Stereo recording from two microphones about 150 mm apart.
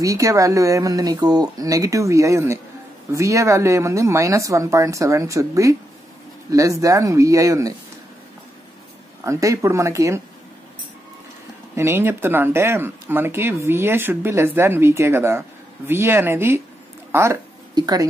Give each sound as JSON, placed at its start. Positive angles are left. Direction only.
{"t": 0.0, "sound": "speech", "side_deg": -20}
{"t": 9.2, "sound": "speech", "side_deg": -20}
{"t": 11.7, "sound": "speech", "side_deg": -15}